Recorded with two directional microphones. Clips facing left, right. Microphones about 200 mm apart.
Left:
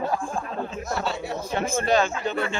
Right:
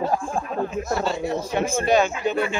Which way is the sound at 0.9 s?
Centre (ahead or behind).